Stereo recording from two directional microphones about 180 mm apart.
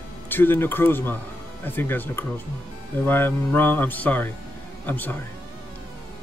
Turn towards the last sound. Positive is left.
turn(degrees=10)  # may be behind; listen again after turning